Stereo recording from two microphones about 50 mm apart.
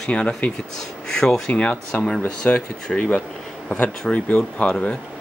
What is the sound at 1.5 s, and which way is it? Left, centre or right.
Speech, left.